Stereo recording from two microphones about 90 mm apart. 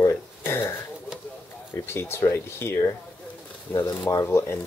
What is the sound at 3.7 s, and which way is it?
Speech, 20° left (ahead or behind).